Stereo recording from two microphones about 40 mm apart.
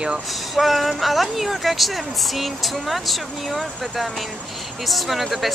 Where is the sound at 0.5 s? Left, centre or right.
Centre.